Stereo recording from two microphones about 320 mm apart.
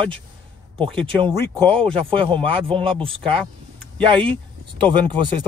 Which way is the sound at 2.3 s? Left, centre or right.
Centre.